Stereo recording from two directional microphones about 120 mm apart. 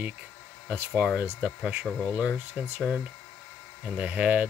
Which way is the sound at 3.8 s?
10° right (ahead or behind).